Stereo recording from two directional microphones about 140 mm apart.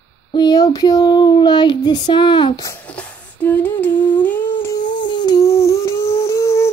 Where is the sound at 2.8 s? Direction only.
10° left (ahead or behind).